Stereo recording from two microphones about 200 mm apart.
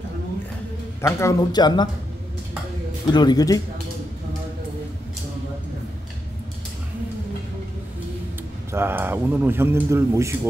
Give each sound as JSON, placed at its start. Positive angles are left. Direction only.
{"t": 1.0, "sound": "speech", "side_deg": 20}
{"t": 3.1, "sound": "speech", "side_deg": 20}
{"t": 8.7, "sound": "speech", "side_deg": -10}